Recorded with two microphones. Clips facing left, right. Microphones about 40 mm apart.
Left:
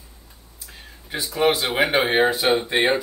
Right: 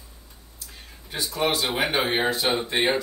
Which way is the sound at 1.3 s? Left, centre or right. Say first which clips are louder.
Left 5 dB; centre.